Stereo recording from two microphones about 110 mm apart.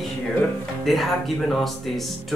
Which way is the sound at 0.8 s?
Centre (ahead or behind).